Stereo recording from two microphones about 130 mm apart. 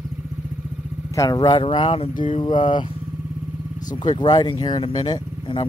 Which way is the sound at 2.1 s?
90° left.